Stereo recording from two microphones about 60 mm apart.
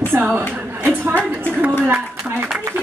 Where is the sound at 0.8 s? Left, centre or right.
Right.